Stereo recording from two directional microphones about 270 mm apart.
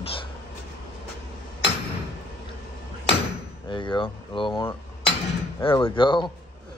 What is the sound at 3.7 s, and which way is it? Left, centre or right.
Speech, centre.